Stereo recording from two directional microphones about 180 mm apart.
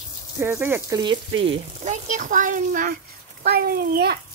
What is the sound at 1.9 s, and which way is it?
A child's voice, 45° right (ahead or behind).